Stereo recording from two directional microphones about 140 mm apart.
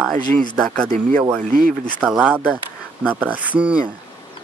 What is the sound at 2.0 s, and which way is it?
Speech, 5° right (ahead or behind).